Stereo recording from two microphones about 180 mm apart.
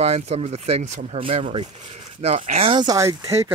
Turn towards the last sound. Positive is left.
turn(degrees=-15)  # may be behind; listen again after turning